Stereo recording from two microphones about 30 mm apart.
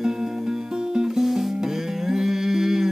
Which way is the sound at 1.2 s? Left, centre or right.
Centre.